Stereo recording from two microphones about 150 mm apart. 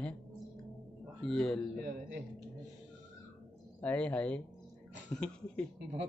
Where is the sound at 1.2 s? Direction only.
5° left (ahead or behind).